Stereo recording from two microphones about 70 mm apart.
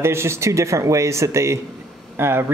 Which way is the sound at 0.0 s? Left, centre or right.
Right.